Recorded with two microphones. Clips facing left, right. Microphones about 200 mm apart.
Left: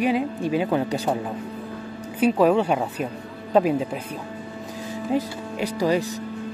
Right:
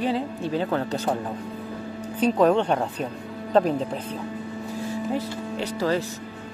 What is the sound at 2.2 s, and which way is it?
Speech, 10° left (ahead or behind).